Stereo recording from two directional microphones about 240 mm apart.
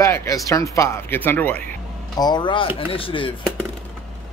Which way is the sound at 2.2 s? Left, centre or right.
Centre.